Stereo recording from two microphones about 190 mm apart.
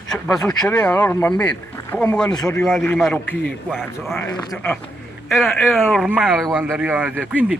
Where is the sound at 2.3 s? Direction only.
20° left (ahead or behind).